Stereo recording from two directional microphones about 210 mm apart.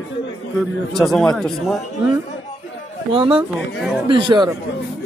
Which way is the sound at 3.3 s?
Centre (ahead or behind).